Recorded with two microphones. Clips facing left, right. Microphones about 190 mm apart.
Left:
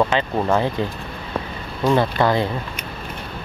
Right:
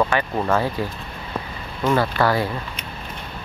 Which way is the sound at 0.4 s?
15° left (ahead or behind).